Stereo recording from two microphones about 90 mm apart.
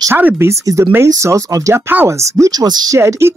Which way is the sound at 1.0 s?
35° right (ahead or behind).